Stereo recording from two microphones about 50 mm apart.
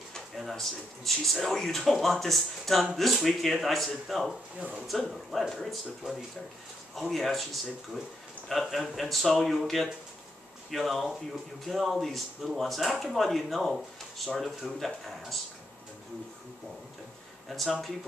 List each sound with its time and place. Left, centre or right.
0.4 s speech: centre
4.6 s speech: right
5.5 s speech: centre
8.5 s speech: centre
17.5 s speech: centre